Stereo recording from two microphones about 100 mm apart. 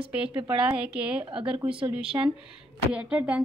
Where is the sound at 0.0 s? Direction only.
60° right (ahead or behind).